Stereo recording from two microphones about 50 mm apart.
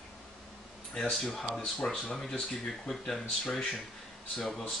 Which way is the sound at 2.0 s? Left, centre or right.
Centre.